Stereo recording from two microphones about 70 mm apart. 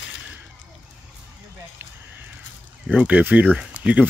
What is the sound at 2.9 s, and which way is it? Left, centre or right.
Speech, right.